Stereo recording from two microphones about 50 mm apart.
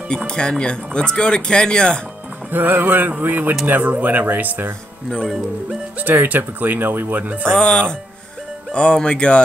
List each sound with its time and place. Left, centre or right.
0.3 s speech: centre
2.5 s speech: right
5.9 s speech: right
7.4 s speech: centre